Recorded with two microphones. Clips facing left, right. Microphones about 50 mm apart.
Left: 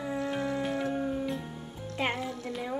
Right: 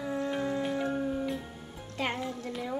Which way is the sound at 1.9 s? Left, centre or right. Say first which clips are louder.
Left 2 dB; left.